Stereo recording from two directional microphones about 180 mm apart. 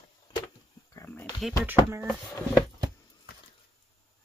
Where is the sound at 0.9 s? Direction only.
15° left (ahead or behind).